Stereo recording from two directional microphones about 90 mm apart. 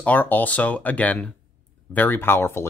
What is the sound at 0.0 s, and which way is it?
Speech, 20° left (ahead or behind).